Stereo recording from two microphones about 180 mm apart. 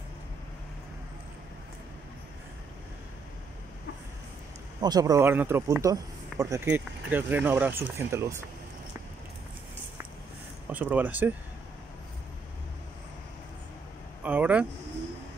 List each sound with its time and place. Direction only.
4.7 s speech: 20° right (ahead or behind)
10.7 s speech: 10° right (ahead or behind)
14.2 s speech: 10° right (ahead or behind)